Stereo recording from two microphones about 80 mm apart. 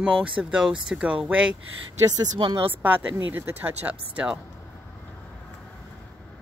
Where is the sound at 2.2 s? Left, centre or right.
Right.